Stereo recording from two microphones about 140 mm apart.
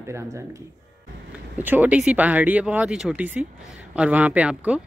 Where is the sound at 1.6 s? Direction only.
10° right (ahead or behind).